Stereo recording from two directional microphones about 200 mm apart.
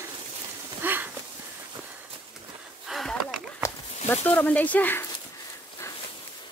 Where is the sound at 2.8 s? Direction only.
Centre (ahead or behind).